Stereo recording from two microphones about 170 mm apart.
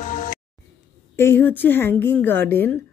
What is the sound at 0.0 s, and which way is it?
Music, 50° left (ahead or behind).